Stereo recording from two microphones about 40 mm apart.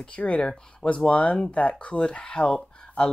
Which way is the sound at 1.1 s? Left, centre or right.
Left.